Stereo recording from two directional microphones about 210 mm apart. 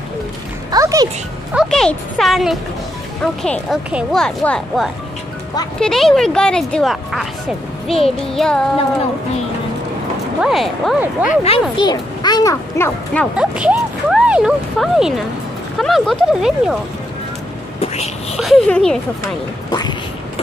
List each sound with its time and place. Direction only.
0.7 s music: 15° right (ahead or behind)
1.5 s speech: centre (ahead or behind)
10.4 s speech: centre (ahead or behind)
11.2 s a child's voice: 30° left (ahead or behind); by 13.3 s 10° left (ahead or behind)
13.4 s speech: 5° right (ahead or behind)
17.7 s speech: 30° left (ahead or behind)
18.4 s speech: centre (ahead or behind)
19.7 s a sound: 20° left (ahead or behind)